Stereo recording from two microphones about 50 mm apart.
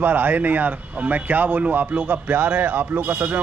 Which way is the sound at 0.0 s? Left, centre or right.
Right.